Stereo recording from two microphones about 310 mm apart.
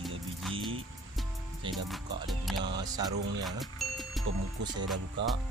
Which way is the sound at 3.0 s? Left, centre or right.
Centre.